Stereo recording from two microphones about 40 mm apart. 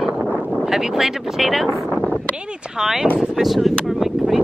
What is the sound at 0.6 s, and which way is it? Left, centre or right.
Speech, centre.